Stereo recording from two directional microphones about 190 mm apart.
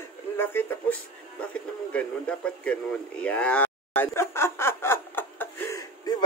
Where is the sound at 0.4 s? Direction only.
10° left (ahead or behind).